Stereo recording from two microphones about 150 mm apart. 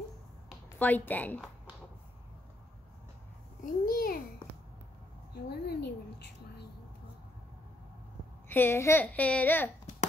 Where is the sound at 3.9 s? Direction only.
70° left (ahead or behind).